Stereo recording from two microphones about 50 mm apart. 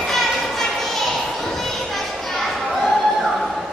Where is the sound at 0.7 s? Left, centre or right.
Centre.